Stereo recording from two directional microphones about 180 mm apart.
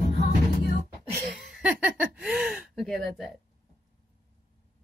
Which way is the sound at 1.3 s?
Centre (ahead or behind).